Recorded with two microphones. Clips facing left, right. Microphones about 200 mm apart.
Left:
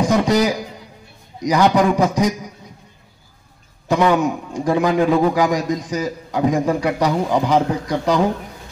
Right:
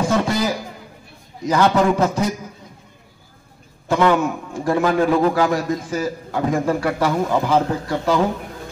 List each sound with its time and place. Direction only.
0.0 s a sound: 15° left (ahead or behind)
1.4 s a man's voice: 15° left (ahead or behind)
3.9 s a man's voice: 15° left (ahead or behind)